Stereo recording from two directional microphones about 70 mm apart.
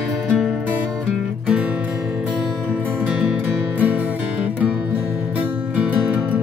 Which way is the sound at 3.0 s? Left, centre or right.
Centre.